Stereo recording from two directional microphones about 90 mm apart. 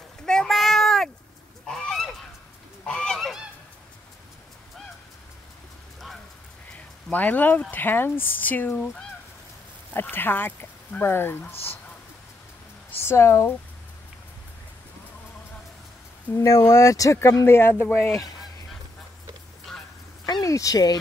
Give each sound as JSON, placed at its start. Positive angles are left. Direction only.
{"t": 0.2, "sound": "a sound", "side_deg": 5}
{"t": 1.7, "sound": "goose", "side_deg": 5}
{"t": 7.1, "sound": "speech", "side_deg": 20}
{"t": 9.9, "sound": "speech", "side_deg": 25}
{"t": 12.9, "sound": "speech", "side_deg": 30}
{"t": 16.4, "sound": "speech", "side_deg": 35}
{"t": 20.2, "sound": "a sound", "side_deg": 45}